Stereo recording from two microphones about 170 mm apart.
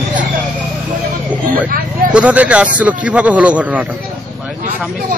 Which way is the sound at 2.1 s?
10° right (ahead or behind).